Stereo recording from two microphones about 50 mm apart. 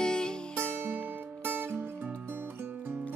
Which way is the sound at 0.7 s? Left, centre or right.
Right.